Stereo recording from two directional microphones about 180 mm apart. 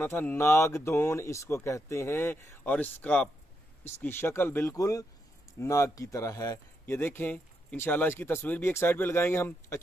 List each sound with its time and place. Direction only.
0.0 s speech: 10° left (ahead or behind)